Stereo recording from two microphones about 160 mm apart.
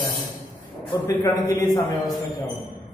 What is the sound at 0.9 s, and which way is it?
A man's voice, 25° left (ahead or behind).